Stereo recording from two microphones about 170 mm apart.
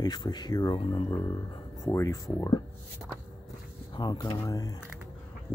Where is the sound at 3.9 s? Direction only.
25° left (ahead or behind).